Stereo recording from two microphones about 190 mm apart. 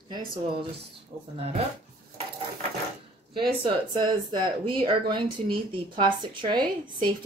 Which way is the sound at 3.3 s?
25° right (ahead or behind).